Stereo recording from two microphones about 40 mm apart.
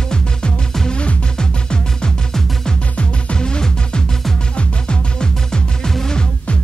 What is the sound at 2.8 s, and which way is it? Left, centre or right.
Music, left.